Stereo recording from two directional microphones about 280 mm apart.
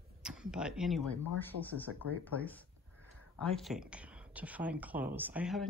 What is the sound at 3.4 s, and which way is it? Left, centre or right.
Speech, centre.